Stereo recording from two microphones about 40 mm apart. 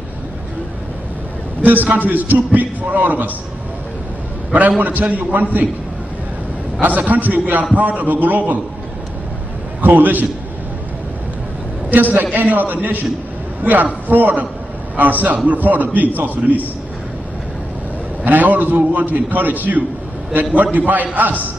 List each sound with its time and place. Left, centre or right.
1.6 s a man's voice: right
4.6 s a man's voice: right
7.0 s a man's voice: right
9.8 s a man's voice: right
11.9 s a man's voice: right
14.0 s a man's voice: right
18.2 s a man's voice: right